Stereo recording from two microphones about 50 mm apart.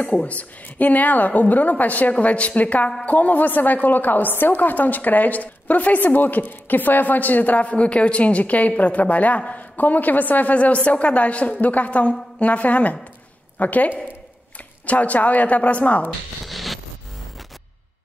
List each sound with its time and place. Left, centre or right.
0.2 s a woman's voice: left
16.4 s zipper: centre